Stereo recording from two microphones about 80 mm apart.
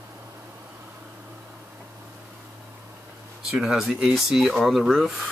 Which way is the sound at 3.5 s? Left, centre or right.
Centre.